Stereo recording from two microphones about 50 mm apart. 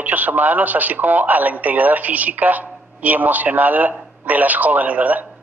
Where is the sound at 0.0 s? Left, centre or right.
Right.